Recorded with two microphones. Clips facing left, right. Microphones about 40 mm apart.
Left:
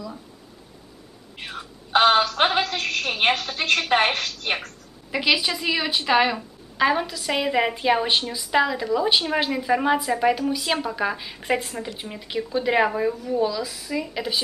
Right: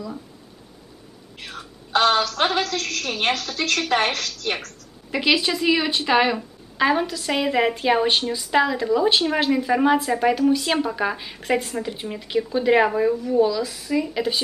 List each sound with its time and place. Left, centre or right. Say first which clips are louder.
1.4 s a sound: left 2 dB; centre
1.9 s a woman's voice: left 1 dB; left
5.1 s a woman's voice: right 2 dB; centre